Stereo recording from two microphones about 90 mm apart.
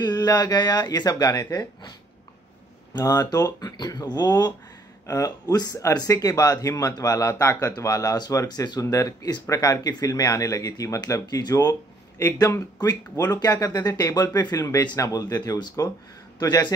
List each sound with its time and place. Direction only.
0.0 s speech: 50° left (ahead or behind)
2.9 s speech: 45° left (ahead or behind)
5.0 s speech: 35° left (ahead or behind)
8.8 s speech: 35° left (ahead or behind)